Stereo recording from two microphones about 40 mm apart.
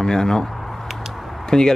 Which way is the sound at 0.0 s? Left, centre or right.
Centre.